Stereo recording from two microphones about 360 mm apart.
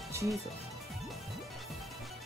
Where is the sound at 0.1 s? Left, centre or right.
Centre.